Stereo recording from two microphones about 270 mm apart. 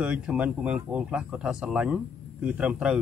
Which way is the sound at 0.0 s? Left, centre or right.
Centre.